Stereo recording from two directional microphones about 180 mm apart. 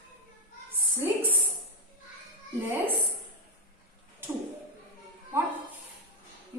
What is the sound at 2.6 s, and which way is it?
Speech, 10° right (ahead or behind).